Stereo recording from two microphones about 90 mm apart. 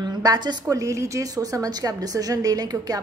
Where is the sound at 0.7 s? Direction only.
35° right (ahead or behind).